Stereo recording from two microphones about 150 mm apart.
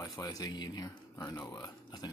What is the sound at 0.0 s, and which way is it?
Speech, 25° left (ahead or behind).